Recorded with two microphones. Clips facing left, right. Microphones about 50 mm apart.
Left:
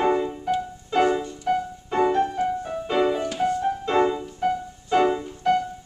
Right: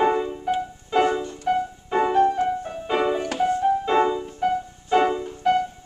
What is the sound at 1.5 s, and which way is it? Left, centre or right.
Music, centre.